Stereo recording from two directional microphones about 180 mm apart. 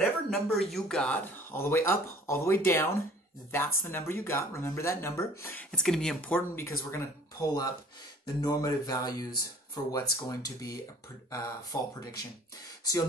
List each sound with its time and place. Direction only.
0.3 s speech: centre (ahead or behind); by 12.2 s 20° left (ahead or behind)